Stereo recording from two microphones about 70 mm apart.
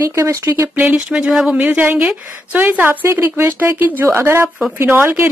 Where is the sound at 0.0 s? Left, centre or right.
Right.